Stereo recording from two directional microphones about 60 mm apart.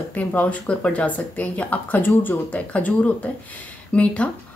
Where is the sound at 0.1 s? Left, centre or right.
Left.